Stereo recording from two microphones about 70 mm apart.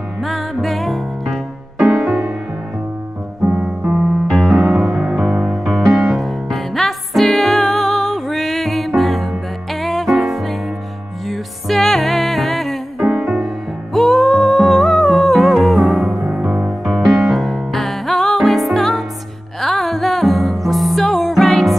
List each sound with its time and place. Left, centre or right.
0.2 s music: centre
4.3 s music: centre
13.9 s humming: centre
19.6 s music: centre